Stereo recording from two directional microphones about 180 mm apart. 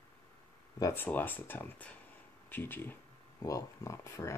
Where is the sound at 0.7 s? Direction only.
15° left (ahead or behind).